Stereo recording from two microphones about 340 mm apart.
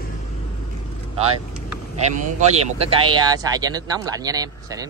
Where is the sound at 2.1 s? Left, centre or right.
Right.